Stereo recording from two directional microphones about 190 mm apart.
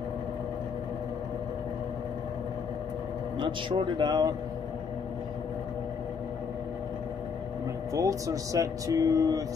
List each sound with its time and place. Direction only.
3.3 s speech: 25° right (ahead or behind)
7.9 s speech: 15° right (ahead or behind)